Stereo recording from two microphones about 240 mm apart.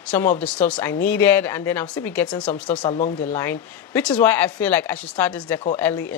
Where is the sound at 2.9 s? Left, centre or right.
Left.